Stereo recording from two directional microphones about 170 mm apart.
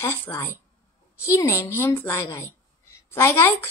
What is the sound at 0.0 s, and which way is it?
A woman's voice, 15° left (ahead or behind).